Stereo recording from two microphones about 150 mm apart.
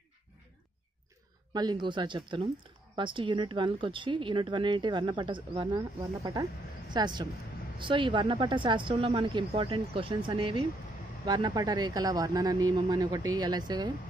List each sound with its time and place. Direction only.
1.5 s speech: 30° right (ahead or behind)